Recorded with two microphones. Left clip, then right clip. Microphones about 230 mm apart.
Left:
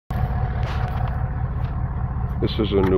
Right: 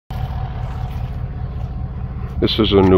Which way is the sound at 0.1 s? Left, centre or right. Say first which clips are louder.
Left 1 dB; left.